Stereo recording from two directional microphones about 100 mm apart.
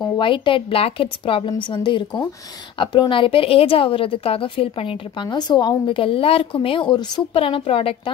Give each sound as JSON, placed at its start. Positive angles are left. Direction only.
{"t": 0.2, "sound": "a woman's voice", "side_deg": 60}
{"t": 7.3, "sound": "a woman's voice", "side_deg": 70}